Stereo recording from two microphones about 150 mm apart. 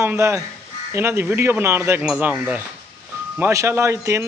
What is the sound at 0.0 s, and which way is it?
A man's voice, 15° right (ahead or behind).